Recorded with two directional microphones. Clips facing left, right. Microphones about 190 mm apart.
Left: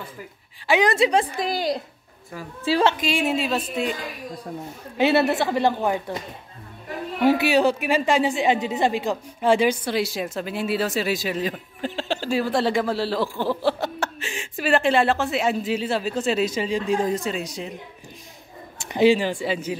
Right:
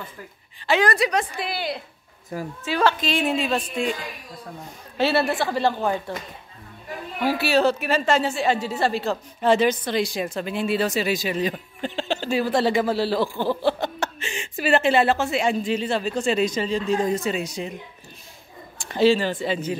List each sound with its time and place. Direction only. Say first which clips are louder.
0.7 s a woman's voice: left 2 dB; 20° left (ahead or behind); by 1.8 s 40° left (ahead or behind)
2.6 s a woman's voice: left 2 dB; 30° left (ahead or behind)
3.0 s a woman's voice: even; 10° left (ahead or behind)
4.9 s a woman's voice: left 2 dB; 20° left (ahead or behind)
7.2 s a woman's voice: left 2 dB; 15° left (ahead or behind)
17.1 s a woman's voice: right 1 dB; centre (ahead or behind)
18.8 s a man's voice: left 1 dB; 15° left (ahead or behind)